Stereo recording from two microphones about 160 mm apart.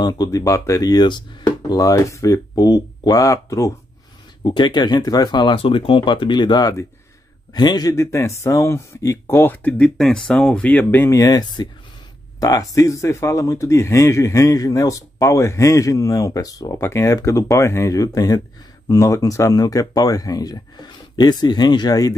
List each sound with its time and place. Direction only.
0.0 s speech: 25° left (ahead or behind)